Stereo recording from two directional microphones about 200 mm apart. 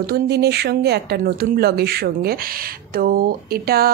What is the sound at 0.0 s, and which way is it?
Speech, 55° right (ahead or behind).